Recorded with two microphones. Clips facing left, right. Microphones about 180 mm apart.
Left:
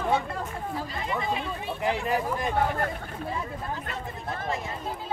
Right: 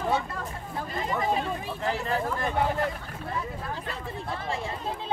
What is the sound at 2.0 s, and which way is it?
Speech, 15° left (ahead or behind).